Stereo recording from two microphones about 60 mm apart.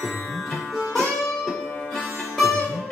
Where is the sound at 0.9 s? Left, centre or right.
Centre.